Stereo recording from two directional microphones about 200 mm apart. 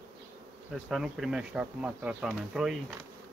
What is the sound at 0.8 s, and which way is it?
Speech, centre (ahead or behind).